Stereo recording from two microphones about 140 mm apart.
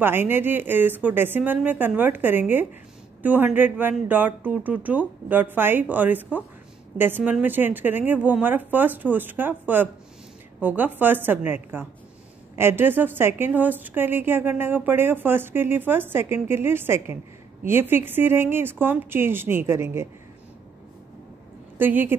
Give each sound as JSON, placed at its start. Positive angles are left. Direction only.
{"t": 0.0, "sound": "a woman's voice", "side_deg": -15}
{"t": 21.7, "sound": "a woman's voice", "side_deg": -15}